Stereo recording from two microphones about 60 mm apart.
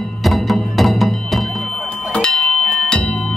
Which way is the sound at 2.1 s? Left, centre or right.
Centre.